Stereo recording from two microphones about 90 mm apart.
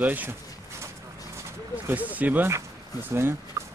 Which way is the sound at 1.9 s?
20° right (ahead or behind).